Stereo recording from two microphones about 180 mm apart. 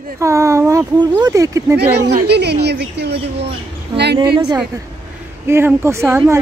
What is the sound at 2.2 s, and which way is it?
Speech, 65° right (ahead or behind).